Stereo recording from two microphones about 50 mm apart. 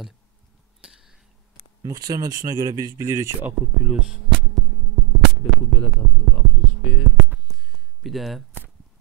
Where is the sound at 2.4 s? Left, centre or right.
Right.